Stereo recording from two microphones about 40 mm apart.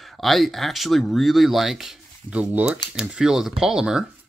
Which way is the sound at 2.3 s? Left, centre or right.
Right.